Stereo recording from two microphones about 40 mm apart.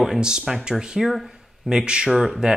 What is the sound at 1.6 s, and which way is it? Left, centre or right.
Speech, centre.